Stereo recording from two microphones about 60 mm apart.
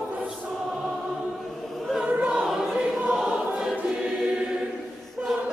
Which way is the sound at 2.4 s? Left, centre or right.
Centre.